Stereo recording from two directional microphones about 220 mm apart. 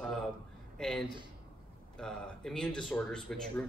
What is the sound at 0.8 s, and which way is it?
A man's voice, centre (ahead or behind).